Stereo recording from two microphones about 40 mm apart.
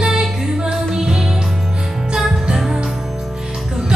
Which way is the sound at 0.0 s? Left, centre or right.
Centre.